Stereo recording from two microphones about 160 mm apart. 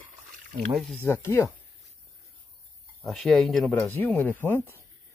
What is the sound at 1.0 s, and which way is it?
Speech, 15° left (ahead or behind).